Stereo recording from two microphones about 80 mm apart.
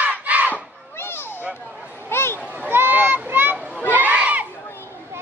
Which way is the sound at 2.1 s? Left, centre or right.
Left.